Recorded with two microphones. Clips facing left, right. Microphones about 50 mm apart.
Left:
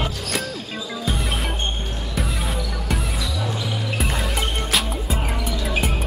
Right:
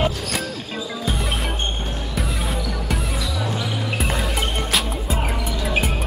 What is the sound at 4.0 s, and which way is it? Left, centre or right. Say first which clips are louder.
Music: right 1 dB; centre.